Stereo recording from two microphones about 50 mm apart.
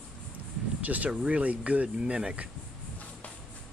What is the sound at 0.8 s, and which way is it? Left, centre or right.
Speech, right.